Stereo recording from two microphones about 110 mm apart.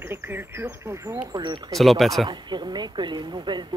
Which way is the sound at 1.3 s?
45° right (ahead or behind).